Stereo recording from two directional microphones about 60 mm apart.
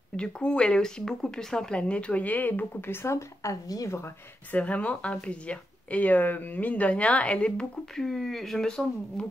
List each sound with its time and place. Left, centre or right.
0.1 s speech: centre; by 3.1 s left
3.1 s speech: left
3.6 s a woman's voice: left
4.5 s speech: left
8.0 s speech: centre